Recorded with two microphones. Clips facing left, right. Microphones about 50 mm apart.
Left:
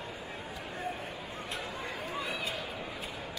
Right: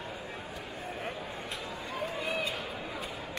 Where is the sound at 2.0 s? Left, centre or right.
Right.